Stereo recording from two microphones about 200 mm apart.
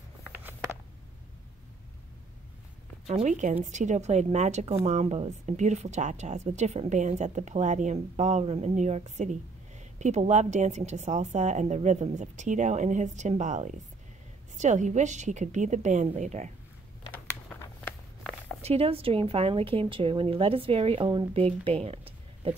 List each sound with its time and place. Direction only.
0.3 s a sound: 10° right (ahead or behind)
3.1 s speech: 35° right (ahead or behind)
18.6 s a woman's voice: 30° right (ahead or behind)